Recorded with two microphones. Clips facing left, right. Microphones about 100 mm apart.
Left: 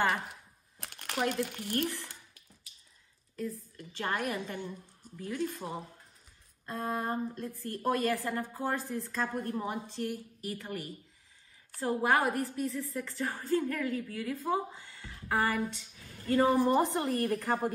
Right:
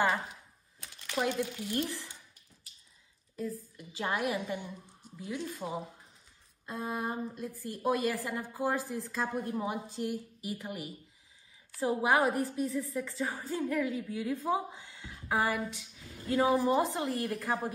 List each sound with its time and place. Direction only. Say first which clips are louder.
0.7 s a sound: right 1 dB; 65° left (ahead or behind)
1.4 s speech: left 1 dB; 60° left (ahead or behind)
3.4 s a woman's voice: right 1 dB; 10° right (ahead or behind)
12.6 s a woman's voice: right 2 dB; 5° right (ahead or behind)